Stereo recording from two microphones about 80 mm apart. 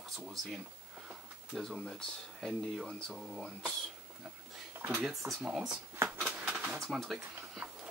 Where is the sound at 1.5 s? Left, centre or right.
Centre.